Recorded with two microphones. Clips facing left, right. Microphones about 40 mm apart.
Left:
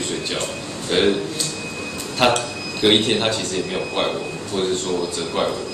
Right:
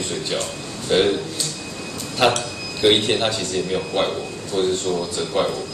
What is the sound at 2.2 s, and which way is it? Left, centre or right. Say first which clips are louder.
Speech: left 1 dB; centre.